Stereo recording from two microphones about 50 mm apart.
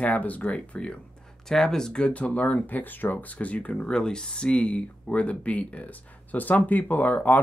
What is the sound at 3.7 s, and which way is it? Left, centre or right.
Speech, centre.